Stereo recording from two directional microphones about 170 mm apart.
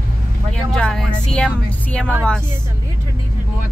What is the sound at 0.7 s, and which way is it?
Speech, 5° left (ahead or behind).